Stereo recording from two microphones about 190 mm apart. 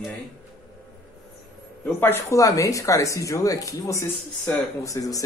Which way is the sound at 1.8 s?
10° left (ahead or behind).